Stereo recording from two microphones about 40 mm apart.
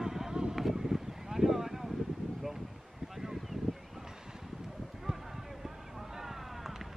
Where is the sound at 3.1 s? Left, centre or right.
Centre.